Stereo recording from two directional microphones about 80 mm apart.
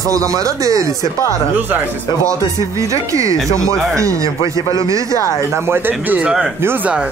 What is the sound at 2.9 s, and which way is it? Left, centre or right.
Speech, right.